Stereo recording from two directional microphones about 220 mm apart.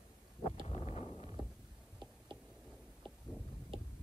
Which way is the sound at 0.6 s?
30° left (ahead or behind).